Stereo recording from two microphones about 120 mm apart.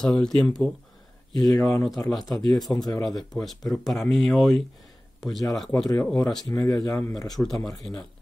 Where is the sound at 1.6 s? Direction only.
25° left (ahead or behind).